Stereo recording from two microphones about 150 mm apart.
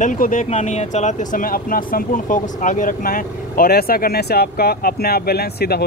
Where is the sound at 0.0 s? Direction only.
60° left (ahead or behind).